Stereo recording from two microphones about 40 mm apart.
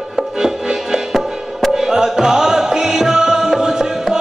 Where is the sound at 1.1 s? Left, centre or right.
Centre.